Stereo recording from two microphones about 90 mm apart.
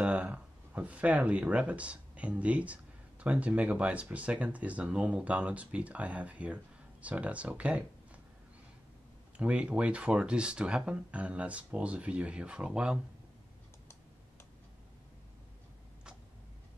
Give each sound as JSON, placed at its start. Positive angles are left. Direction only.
{"t": 0.0, "sound": "speech", "side_deg": -15}
{"t": 9.4, "sound": "speech", "side_deg": -15}